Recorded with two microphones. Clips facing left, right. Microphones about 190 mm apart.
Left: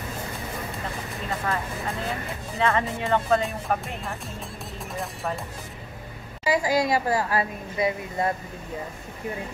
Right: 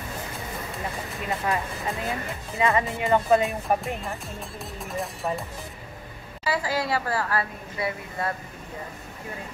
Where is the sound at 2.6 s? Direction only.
10° right (ahead or behind).